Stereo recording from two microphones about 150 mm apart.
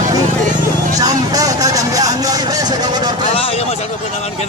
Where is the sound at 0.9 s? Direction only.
25° right (ahead or behind).